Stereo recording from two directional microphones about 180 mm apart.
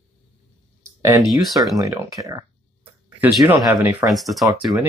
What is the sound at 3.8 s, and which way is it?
Speech, 5° right (ahead or behind).